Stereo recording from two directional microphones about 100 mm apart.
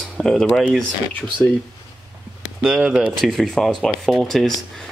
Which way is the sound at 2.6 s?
5° right (ahead or behind).